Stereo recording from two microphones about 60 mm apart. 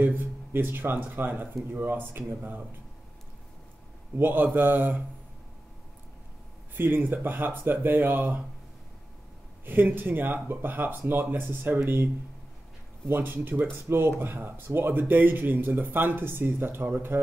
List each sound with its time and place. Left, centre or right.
0.0 s speech: right
4.2 s speech: right
6.7 s speech: right
9.7 s speech: right
13.1 s speech: right